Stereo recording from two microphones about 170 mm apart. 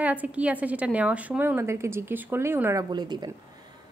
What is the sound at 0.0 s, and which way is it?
Speech, 10° right (ahead or behind).